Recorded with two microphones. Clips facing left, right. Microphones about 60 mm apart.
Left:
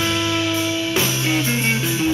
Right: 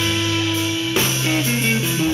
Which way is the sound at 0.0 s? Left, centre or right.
Centre.